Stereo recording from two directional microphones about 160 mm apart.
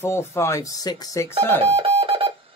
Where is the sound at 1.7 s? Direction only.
40° right (ahead or behind).